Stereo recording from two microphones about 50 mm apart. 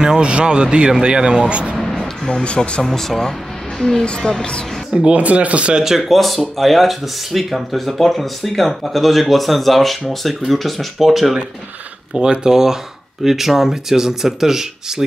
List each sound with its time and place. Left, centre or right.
0.0 s speech: centre
1.8 s a sound: centre
2.2 s speech: centre
2.8 s speech: centre
5.1 s speech: right
5.9 s speech: centre
12.1 s speech: centre